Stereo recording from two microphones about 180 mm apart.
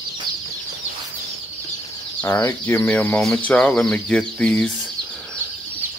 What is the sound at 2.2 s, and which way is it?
Speech, 15° left (ahead or behind).